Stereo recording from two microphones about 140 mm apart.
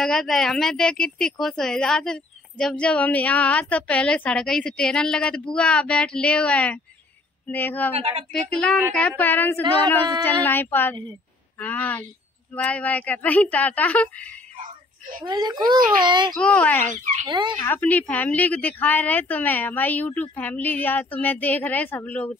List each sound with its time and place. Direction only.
0.0 s a woman's voice: 5° left (ahead or behind)
7.9 s speech: 45° right (ahead or behind)
8.3 s a woman's voice: 5° left (ahead or behind)
15.2 s a child's voice: 30° right (ahead or behind)
16.3 s a woman's voice: 10° left (ahead or behind)
17.0 s speech: 55° right (ahead or behind)
17.3 s a child's voice: 35° right (ahead or behind)
17.6 s a woman's voice: 15° left (ahead or behind)